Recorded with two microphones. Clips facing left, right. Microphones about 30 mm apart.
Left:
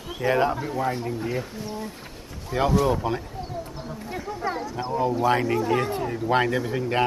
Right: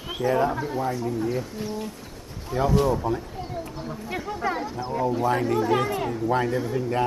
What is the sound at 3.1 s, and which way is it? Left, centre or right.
Speech, left.